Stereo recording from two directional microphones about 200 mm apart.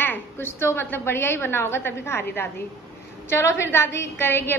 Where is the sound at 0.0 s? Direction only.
10° left (ahead or behind).